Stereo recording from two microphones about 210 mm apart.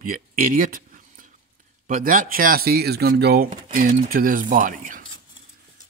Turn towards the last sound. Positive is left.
turn(degrees=-40)  # may be behind; listen again after turning